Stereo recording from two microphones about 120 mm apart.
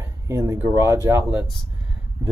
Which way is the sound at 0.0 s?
25° right (ahead or behind).